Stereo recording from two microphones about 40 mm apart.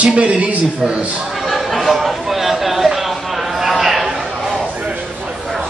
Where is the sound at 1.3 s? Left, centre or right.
Centre.